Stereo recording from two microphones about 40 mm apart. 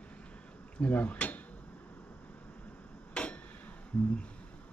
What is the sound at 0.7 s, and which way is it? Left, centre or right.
Speech, left.